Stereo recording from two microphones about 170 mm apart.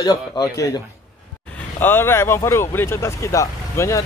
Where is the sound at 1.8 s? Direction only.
15° left (ahead or behind).